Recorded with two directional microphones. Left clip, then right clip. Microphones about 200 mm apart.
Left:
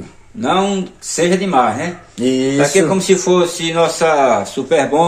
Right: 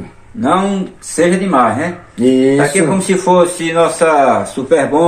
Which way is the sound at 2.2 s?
5° left (ahead or behind).